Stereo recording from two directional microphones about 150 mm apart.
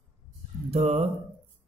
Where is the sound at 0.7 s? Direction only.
40° right (ahead or behind).